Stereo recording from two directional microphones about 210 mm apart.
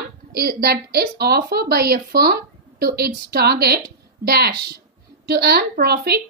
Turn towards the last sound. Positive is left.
turn(degrees=-50)  # may be behind; listen again after turning